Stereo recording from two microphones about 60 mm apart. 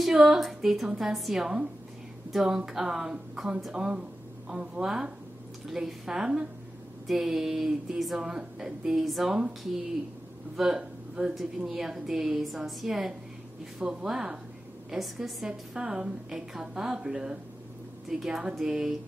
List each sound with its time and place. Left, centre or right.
0.0 s a woman's voice: centre
10.5 s speech: centre